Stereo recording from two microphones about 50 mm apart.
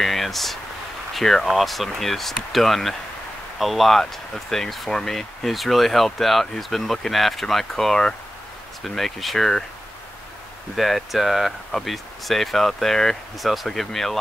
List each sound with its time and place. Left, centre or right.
0.0 s speech: centre
10.8 s speech: centre